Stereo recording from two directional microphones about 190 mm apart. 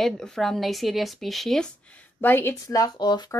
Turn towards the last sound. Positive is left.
turn(degrees=20)  # may be behind; listen again after turning